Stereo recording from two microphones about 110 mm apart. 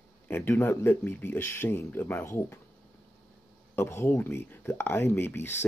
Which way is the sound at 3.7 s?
25° left (ahead or behind).